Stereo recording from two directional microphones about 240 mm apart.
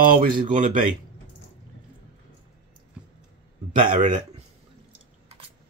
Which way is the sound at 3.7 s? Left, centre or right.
Right.